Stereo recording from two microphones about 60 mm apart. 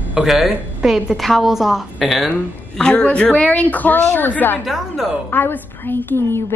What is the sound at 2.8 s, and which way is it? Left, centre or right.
A woman's voice, centre.